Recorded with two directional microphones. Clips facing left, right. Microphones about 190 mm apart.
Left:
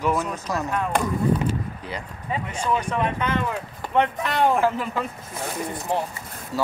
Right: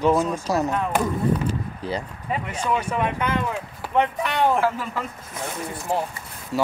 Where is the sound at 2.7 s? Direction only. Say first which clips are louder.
Even; 10° right (ahead or behind).